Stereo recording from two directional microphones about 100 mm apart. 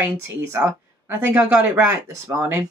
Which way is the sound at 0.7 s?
25° right (ahead or behind).